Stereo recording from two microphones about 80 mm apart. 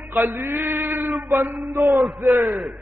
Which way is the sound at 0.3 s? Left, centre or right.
Right.